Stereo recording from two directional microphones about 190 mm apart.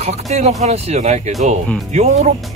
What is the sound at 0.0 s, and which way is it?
Speech, 35° right (ahead or behind).